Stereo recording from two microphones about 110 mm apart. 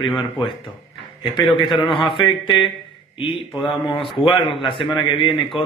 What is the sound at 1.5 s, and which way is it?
A man's voice, 50° left (ahead or behind).